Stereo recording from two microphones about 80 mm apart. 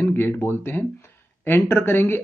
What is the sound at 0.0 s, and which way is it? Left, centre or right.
Speech, left.